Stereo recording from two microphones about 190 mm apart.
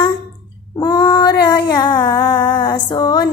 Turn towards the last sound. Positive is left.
turn(degrees=20)  # may be behind; listen again after turning